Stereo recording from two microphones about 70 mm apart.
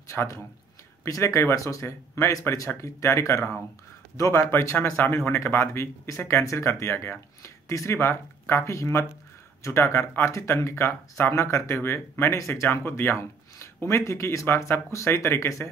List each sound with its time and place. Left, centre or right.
0.1 s a man's voice: left
4.7 s speech: left